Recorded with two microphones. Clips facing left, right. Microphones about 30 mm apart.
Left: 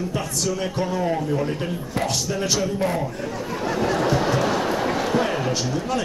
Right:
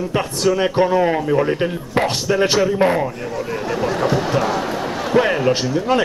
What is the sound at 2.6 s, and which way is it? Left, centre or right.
Speech, right.